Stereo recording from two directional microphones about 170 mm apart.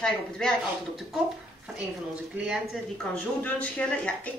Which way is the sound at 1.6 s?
5° right (ahead or behind).